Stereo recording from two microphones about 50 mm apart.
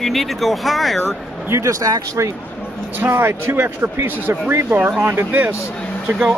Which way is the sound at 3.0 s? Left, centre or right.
Right.